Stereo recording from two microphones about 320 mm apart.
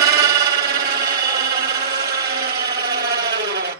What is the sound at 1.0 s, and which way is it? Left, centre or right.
Wood, right.